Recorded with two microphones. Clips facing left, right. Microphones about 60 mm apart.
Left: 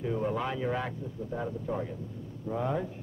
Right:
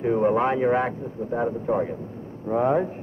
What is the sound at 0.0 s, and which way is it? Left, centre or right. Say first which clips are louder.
A man's voice: right 10 dB; right.